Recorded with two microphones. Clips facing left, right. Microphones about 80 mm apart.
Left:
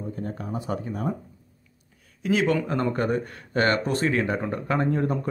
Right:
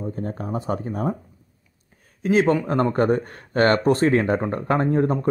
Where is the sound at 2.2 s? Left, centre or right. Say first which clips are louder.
Right 4 dB; right.